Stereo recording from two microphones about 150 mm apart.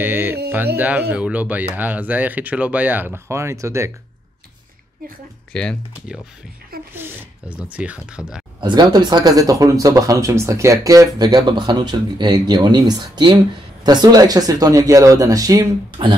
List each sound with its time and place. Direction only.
0.0 s speech: 15° right (ahead or behind)
5.5 s speech: 5° left (ahead or behind)
6.9 s speech: 10° right (ahead or behind)
8.5 s speech: 30° right (ahead or behind)